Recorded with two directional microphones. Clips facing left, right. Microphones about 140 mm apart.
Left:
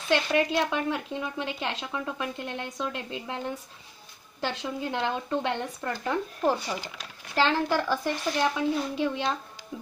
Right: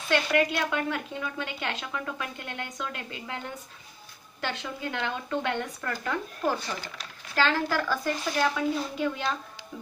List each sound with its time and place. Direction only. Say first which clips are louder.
0.1 s speech: left 1 dB; 25° left (ahead or behind)
4.4 s speech: left 3 dB; 30° left (ahead or behind)